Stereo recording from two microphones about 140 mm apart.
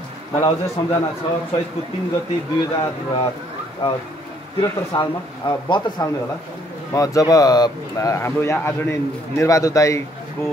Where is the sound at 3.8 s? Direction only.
40° left (ahead or behind); by 10.0 s 20° left (ahead or behind).